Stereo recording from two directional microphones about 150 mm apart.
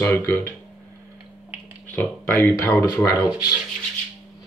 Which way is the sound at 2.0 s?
15° left (ahead or behind).